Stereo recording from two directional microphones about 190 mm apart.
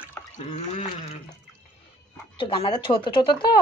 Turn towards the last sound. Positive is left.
turn(degrees=25)  # may be behind; listen again after turning